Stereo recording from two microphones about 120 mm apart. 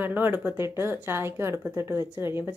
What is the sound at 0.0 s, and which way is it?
A woman's voice, 15° right (ahead or behind).